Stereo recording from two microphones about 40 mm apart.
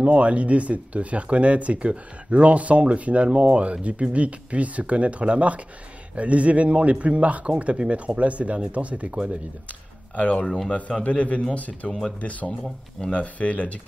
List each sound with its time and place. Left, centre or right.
0.0 s speech: right
10.1 s a man's voice: left